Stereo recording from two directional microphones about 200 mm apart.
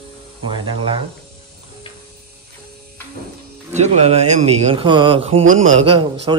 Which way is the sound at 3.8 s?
35° right (ahead or behind).